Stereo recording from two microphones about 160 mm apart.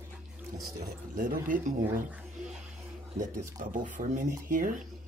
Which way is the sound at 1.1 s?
60° right (ahead or behind).